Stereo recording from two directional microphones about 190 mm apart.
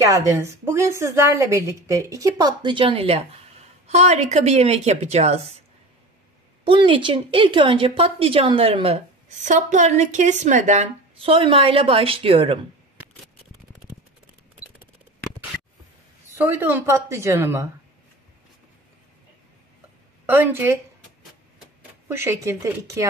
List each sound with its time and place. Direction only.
0.0 s a woman's voice: 15° right (ahead or behind); by 5.6 s 35° right (ahead or behind)
6.6 s a woman's voice: 25° right (ahead or behind)
16.3 s a woman's voice: 10° right (ahead or behind)
20.2 s a woman's voice: 10° right (ahead or behind)
22.0 s a woman's voice: 15° right (ahead or behind)